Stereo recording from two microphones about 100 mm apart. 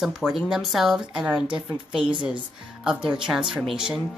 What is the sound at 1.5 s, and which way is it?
Speech, 55° right (ahead or behind).